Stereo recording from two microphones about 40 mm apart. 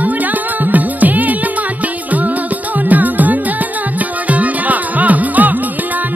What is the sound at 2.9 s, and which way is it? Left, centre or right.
Music, right.